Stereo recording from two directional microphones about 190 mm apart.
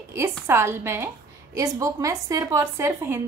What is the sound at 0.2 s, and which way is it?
A woman's voice, 15° right (ahead or behind).